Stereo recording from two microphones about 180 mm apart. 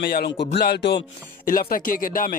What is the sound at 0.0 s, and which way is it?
Speech, 60° left (ahead or behind).